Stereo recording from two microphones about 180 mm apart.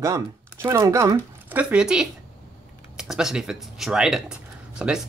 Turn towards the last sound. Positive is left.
turn(degrees=-5)  # may be behind; listen again after turning